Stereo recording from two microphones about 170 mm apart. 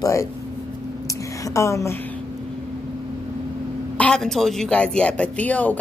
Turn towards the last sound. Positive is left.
turn(degrees=10)  # may be behind; listen again after turning